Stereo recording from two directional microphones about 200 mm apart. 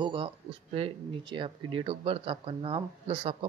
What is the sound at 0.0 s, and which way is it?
Speech, 25° right (ahead or behind).